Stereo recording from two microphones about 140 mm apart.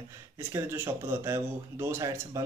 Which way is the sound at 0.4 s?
20° right (ahead or behind).